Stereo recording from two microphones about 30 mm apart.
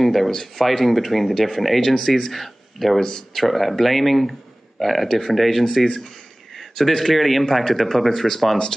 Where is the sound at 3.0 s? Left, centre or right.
Centre.